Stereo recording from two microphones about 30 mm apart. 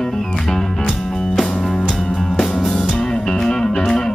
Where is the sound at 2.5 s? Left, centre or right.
Centre.